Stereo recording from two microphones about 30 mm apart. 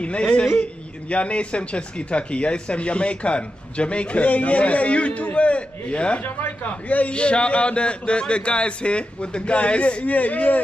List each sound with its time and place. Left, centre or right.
0.0 s speech: left
0.6 s speech: left
10.0 s speech: left